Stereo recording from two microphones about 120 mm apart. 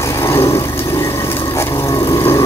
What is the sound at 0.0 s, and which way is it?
Vehicle, 20° left (ahead or behind).